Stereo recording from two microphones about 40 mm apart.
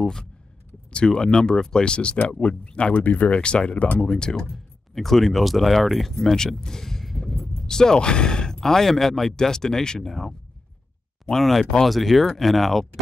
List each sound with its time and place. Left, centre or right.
0.9 s speech: centre
3.0 s speech: left
3.3 s speech: left
4.5 s speech: centre
6.5 s a sound: centre
7.6 s speech: centre
11.3 s speech: centre